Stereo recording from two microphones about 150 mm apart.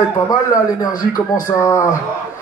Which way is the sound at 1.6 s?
20° left (ahead or behind).